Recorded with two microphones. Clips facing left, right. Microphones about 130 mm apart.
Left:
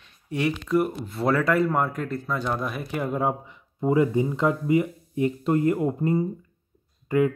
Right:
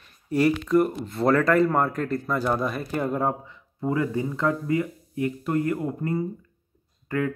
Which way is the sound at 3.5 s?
20° left (ahead or behind).